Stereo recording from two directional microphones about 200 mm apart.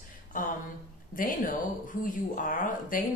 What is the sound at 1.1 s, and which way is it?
Speech, 45° left (ahead or behind).